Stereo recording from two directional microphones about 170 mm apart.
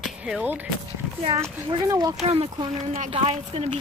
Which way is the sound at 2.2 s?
35° right (ahead or behind).